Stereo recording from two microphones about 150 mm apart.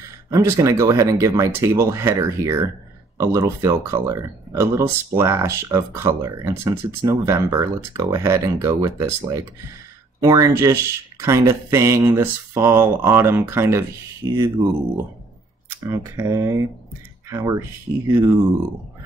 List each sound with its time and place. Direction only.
0.0 s speech: 20° right (ahead or behind)
15.8 s speech: 20° right (ahead or behind)